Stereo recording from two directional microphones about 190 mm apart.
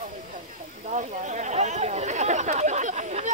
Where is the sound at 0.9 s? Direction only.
40° right (ahead or behind).